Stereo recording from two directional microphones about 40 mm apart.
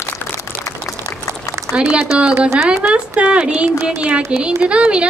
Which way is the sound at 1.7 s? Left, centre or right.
Right.